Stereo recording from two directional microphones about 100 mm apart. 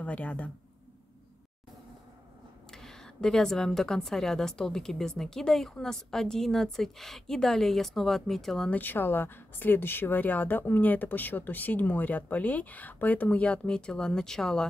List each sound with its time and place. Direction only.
0.0 s speech: 15° left (ahead or behind)
2.7 s speech: 5° left (ahead or behind)
8.6 s speech: 15° left (ahead or behind)